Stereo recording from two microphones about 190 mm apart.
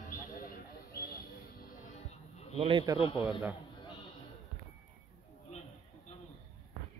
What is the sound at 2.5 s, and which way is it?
Speech, 30° right (ahead or behind).